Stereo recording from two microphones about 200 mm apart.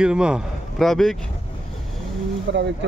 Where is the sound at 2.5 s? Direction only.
60° right (ahead or behind).